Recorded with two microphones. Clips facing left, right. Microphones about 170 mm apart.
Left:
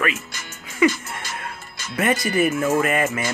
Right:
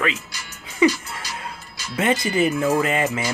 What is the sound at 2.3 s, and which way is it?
Speech, 25° right (ahead or behind).